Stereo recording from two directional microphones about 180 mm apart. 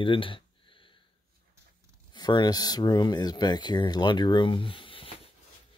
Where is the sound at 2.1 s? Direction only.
25° left (ahead or behind).